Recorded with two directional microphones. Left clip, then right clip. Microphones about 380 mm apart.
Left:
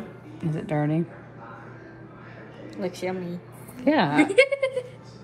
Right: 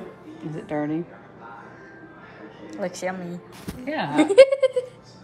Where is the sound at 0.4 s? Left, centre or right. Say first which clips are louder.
Left 1 dB; left.